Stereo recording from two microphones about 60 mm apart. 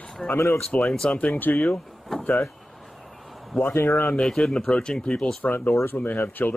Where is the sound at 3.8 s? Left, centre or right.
Left.